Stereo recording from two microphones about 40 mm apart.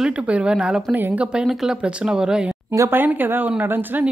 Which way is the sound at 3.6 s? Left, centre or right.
Right.